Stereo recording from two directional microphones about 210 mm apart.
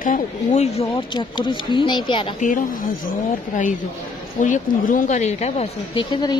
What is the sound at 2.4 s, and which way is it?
Speech, 40° left (ahead or behind).